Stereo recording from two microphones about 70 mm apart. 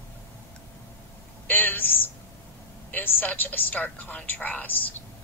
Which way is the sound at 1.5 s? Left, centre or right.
Left.